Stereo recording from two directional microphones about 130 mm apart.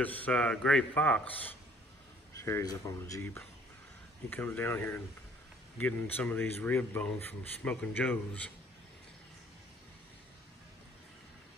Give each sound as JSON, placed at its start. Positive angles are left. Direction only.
{"t": 0.0, "sound": "speech", "side_deg": 10}
{"t": 2.3, "sound": "speech", "side_deg": 25}
{"t": 4.3, "sound": "speech", "side_deg": 15}